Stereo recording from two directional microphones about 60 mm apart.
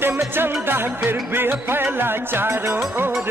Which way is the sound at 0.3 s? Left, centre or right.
Right.